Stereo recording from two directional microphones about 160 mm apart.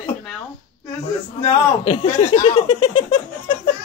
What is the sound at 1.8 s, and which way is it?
Speech, 40° left (ahead or behind).